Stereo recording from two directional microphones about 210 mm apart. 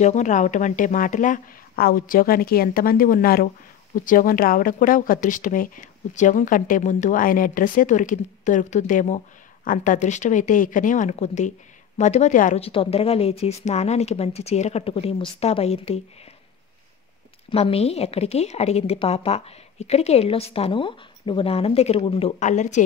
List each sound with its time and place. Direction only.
0.0 s a woman's voice: 35° left (ahead or behind)
17.5 s a woman's voice: 25° left (ahead or behind)